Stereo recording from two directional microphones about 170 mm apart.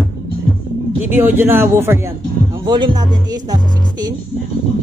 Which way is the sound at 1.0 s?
10° right (ahead or behind).